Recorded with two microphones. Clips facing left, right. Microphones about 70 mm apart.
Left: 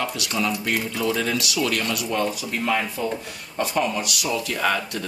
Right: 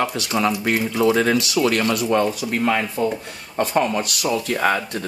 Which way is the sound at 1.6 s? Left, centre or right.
Right.